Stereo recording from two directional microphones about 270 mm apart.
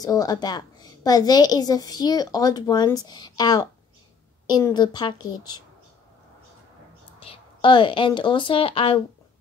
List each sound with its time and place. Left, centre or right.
0.0 s a woman's voice: centre
7.2 s a woman's voice: centre